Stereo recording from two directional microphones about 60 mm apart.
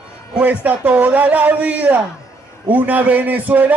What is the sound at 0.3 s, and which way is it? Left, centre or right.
Speech, right.